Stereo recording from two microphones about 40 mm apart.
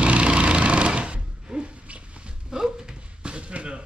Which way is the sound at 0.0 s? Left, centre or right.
Right.